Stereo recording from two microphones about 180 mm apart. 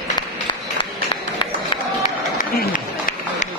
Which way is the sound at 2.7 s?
50° left (ahead or behind).